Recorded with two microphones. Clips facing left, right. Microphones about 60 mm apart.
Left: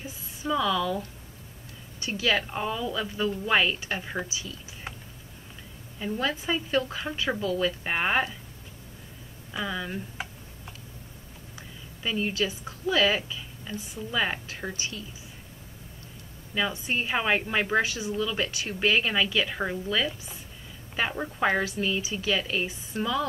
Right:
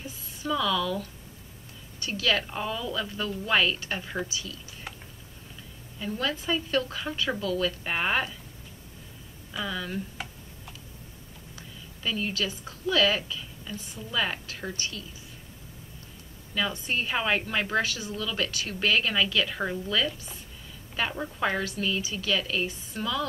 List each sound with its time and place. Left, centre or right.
0.0 s a sound: centre
2.0 s a woman's voice: left
5.9 s a woman's voice: left
9.5 s tick: centre
11.5 s a woman's voice: left
16.5 s a woman's voice: centre